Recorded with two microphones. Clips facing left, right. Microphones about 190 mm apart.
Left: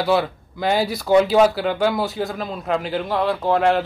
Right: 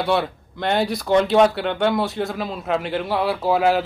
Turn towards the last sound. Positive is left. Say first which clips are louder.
# even
turn(degrees=-5)  # may be behind; listen again after turning